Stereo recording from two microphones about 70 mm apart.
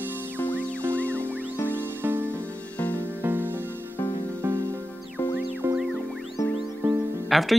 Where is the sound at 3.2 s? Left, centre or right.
Right.